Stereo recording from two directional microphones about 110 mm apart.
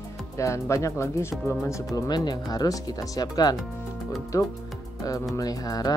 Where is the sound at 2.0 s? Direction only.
40° left (ahead or behind).